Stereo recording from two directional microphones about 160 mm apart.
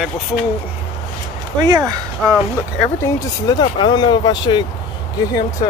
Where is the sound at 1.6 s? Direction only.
25° right (ahead or behind).